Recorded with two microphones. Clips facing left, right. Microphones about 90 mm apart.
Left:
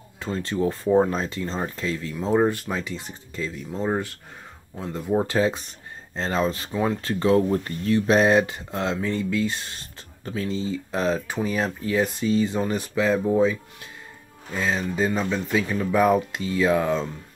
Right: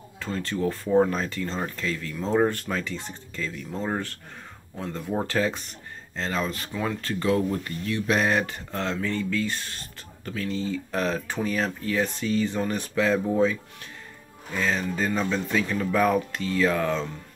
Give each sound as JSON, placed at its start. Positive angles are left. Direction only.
{"t": 0.2, "sound": "speech", "side_deg": 25}
{"t": 6.1, "sound": "speech", "side_deg": 30}